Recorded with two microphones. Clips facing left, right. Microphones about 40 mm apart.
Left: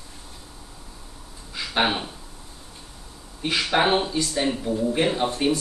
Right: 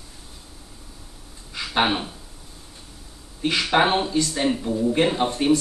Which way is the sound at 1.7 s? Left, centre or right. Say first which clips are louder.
Right 1 dB; centre.